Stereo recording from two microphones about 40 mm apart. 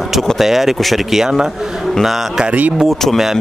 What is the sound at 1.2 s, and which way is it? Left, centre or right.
Speech, centre.